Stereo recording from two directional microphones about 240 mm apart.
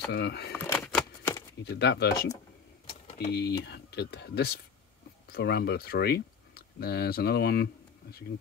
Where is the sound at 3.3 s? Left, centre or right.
Left.